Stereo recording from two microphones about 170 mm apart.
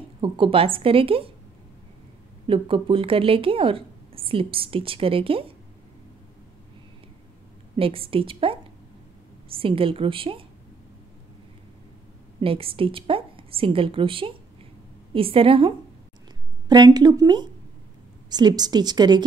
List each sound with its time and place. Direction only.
0.2 s speech: 30° right (ahead or behind)
2.4 s speech: 30° right (ahead or behind)
7.7 s speech: 35° right (ahead or behind)
12.4 s a woman's voice: 35° right (ahead or behind)